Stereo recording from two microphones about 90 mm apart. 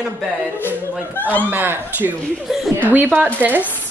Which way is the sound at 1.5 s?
20° right (ahead or behind).